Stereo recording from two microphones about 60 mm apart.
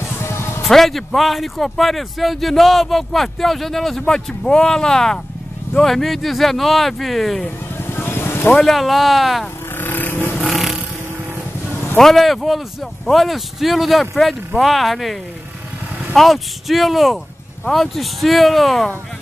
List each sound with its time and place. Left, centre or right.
0.2 s music: left
0.7 s a man's voice: centre
7.8 s vehicle: left
8.5 s a man's voice: centre
9.8 s vehicle: left
10.5 s a sound: centre
12.0 s a man's voice: centre
16.2 s a man's voice: centre